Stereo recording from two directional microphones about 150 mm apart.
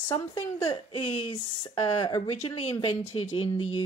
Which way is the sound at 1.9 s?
30° left (ahead or behind).